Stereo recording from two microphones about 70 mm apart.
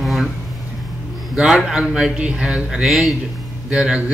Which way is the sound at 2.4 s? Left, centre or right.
Centre.